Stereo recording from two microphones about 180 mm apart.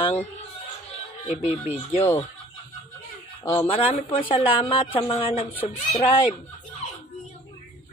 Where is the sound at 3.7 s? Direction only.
30° left (ahead or behind).